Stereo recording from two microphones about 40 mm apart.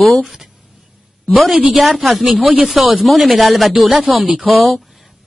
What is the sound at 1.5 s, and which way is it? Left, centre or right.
Speech, right.